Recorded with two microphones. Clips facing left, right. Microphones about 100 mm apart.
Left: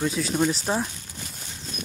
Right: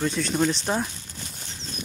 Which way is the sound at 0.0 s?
5° left (ahead or behind).